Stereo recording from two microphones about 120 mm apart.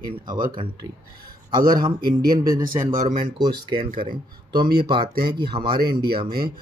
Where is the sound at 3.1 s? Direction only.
40° right (ahead or behind).